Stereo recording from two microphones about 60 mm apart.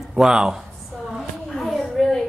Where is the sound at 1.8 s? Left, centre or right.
Centre.